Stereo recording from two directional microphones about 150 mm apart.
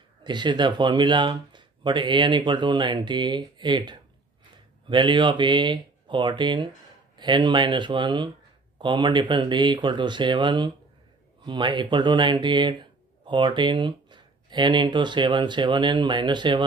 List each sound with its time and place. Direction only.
0.2 s speech: 30° right (ahead or behind)